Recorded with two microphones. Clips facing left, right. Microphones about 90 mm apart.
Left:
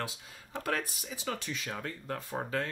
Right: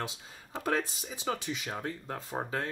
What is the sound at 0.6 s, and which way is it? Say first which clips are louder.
Speech: right 3 dB; 20° right (ahead or behind).